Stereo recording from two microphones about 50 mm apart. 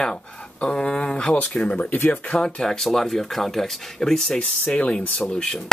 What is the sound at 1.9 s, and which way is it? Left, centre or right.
Speech, left.